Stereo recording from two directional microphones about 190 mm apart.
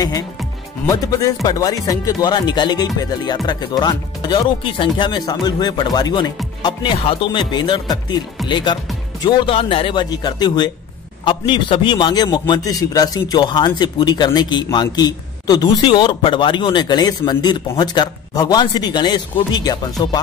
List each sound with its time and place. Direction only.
0.8 s a man's voice: 20° left (ahead or behind)